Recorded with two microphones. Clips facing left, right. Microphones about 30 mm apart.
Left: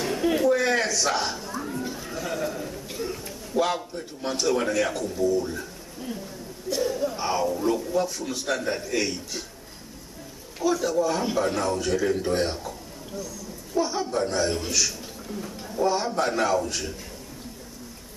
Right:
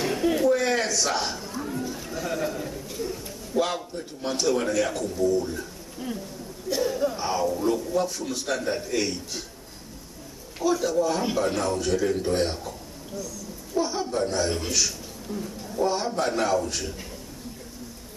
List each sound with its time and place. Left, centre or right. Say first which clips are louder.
0.2 s a sound: left 1 dB; centre
2.9 s a sound: even; centre
3.5 s a man's voice: left 1 dB; centre
6.7 s a man's voice: right 1 dB; centre
7.2 s a man's voice: even; centre
10.6 s a man's voice: even; centre
13.7 s a man's voice: left 1 dB; centre